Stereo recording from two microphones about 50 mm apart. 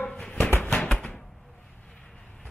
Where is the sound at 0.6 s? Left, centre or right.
Centre.